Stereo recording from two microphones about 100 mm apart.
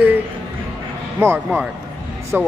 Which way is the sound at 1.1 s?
20° right (ahead or behind).